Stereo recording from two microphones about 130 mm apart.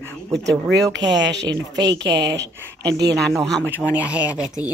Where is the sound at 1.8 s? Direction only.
30° right (ahead or behind).